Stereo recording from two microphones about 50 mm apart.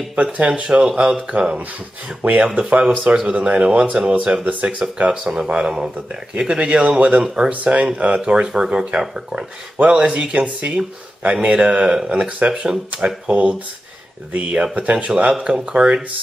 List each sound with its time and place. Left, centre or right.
0.1 s speech: right
5.2 s speech: centre
9.8 s speech: right
14.8 s speech: right